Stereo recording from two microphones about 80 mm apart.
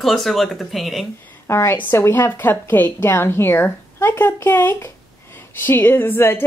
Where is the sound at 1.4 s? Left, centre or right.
Left.